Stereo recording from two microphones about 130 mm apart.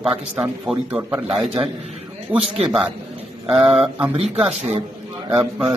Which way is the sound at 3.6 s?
45° right (ahead or behind).